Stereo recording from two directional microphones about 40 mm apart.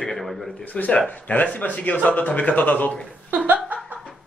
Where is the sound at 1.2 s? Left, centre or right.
Left.